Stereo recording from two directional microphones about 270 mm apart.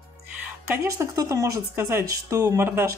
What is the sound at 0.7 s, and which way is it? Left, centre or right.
Speech, centre.